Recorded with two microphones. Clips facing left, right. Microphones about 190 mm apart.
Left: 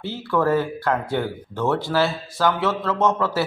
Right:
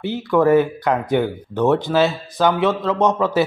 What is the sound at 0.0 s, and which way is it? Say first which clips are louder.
A man's voice: right 5 dB; 15° right (ahead or behind).